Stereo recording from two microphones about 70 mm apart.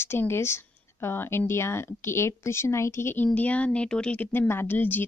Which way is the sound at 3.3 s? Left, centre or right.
Left.